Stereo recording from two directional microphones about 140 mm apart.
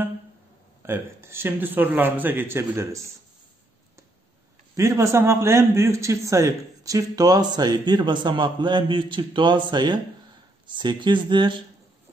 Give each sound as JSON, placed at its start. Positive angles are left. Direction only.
{"t": 0.8, "sound": "a man's voice", "side_deg": -15}
{"t": 4.7, "sound": "a man's voice", "side_deg": -20}